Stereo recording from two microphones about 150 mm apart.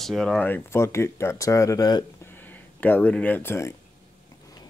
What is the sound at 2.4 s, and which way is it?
Speech, 10° left (ahead or behind).